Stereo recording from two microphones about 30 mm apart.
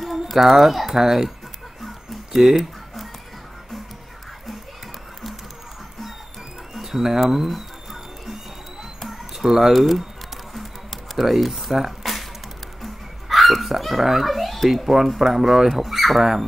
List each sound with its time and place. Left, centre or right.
0.0 s bird: centre
1.0 s speech: centre
2.3 s a sound: centre
6.7 s a sound: centre
7.2 s speech: centre
7.5 s music: centre
9.4 s speech: centre
9.7 s speech: centre
11.1 s speech: centre
12.8 s dog: centre
14.2 s speech: centre
15.2 s speech: centre
15.7 s speech: centre